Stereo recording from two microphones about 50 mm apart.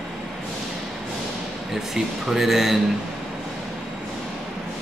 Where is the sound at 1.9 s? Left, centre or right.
Centre.